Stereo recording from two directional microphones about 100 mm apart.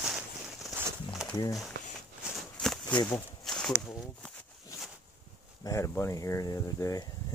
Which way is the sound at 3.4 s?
5° left (ahead or behind).